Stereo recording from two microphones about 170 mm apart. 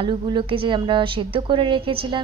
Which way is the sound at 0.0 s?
30° right (ahead or behind).